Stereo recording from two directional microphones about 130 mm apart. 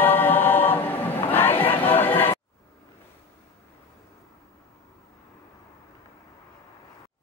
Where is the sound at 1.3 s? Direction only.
15° left (ahead or behind).